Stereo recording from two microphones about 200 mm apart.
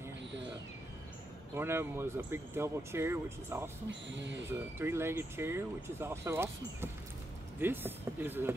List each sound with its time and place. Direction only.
1.5 s speech: 10° right (ahead or behind)
3.9 s speech: 65° right (ahead or behind)
4.5 s speech: 10° right (ahead or behind)